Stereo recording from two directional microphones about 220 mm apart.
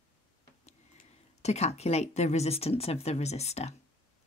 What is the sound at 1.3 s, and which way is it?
Speech, 30° left (ahead or behind).